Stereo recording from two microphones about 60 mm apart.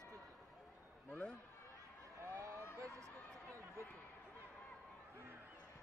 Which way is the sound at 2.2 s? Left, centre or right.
Right.